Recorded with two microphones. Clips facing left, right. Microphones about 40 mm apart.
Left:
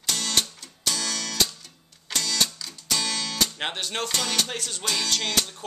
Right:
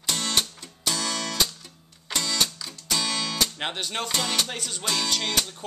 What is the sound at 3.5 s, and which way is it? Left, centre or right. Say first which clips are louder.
Speech: even; centre.